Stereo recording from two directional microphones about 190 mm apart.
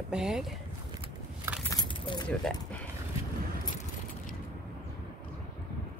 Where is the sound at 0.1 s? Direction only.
5° right (ahead or behind).